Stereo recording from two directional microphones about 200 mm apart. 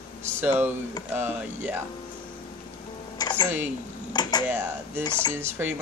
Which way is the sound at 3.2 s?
20° left (ahead or behind).